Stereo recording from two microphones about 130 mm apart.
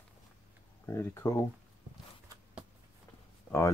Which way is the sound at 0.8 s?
20° left (ahead or behind).